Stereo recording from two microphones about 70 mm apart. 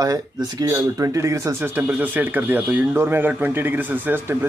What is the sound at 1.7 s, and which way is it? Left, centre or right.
Speech, right.